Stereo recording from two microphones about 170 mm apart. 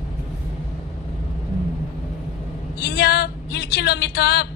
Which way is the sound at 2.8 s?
75° left (ahead or behind).